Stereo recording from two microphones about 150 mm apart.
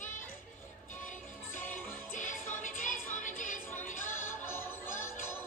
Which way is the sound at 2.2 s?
60° left (ahead or behind).